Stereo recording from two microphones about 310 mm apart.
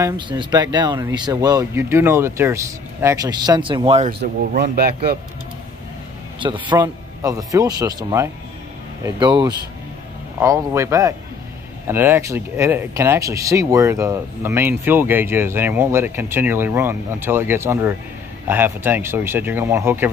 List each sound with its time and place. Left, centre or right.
0.0 s speech: centre
4.2 s speech: right
6.4 s speech: centre